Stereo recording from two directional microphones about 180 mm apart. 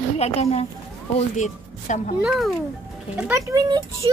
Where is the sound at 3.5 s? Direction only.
20° right (ahead or behind).